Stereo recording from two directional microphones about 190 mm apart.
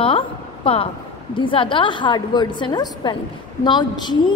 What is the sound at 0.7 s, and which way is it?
A woman's voice, 30° left (ahead or behind).